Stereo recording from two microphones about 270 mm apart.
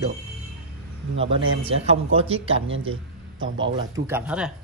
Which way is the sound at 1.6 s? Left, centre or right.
Right.